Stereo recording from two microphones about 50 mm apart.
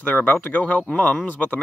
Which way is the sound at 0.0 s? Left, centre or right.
Left.